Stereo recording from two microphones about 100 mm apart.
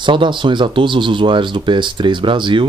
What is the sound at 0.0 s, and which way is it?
Speech, 55° right (ahead or behind).